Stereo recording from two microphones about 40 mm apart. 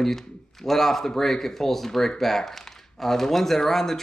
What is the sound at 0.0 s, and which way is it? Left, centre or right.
Speech, centre.